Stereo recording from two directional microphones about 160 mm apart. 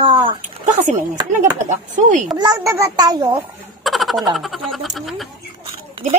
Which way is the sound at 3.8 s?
Centre (ahead or behind).